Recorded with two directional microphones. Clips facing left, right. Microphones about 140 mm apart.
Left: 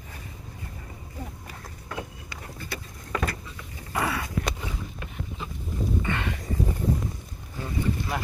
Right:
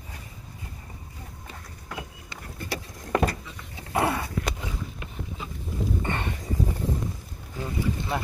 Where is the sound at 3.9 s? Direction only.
45° right (ahead or behind).